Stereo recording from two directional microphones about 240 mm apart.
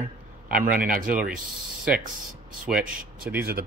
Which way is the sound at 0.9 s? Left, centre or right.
Right.